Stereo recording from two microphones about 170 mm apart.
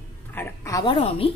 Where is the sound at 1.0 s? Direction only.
35° left (ahead or behind).